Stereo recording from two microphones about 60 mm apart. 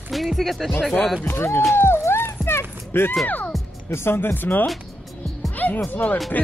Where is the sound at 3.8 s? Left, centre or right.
Left.